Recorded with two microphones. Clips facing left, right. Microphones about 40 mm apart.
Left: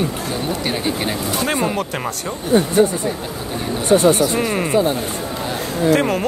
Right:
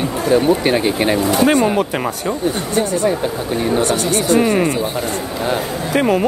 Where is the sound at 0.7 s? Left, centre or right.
Right.